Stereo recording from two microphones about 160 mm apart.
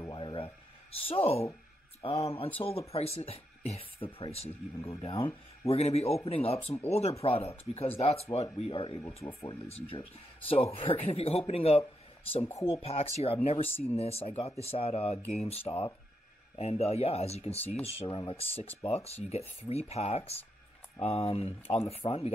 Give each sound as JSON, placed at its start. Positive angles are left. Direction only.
{"t": 0.0, "sound": "a sound", "side_deg": 30}
{"t": 0.9, "sound": "speech", "side_deg": 35}
{"t": 5.7, "sound": "speech", "side_deg": 40}
{"t": 12.8, "sound": "speech", "side_deg": 40}